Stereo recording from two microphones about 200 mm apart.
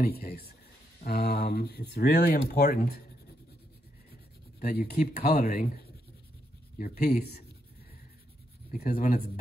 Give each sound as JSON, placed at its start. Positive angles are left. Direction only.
{"t": 0.0, "sound": "speech", "side_deg": 50}
{"t": 4.6, "sound": "speech", "side_deg": 45}
{"t": 8.7, "sound": "speech", "side_deg": 45}